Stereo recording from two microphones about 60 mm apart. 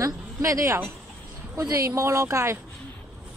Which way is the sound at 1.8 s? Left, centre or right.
Right.